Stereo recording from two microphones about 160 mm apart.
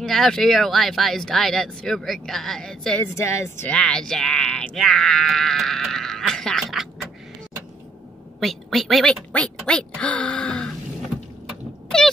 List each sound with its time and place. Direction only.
0.0 s speech: centre (ahead or behind)
3.2 s speech: 15° left (ahead or behind)
3.7 s speech: 5° left (ahead or behind)
8.4 s speech: centre (ahead or behind)
11.4 s cat: 5° left (ahead or behind)